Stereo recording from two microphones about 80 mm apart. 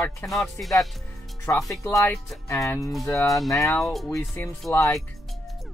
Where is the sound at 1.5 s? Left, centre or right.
Left.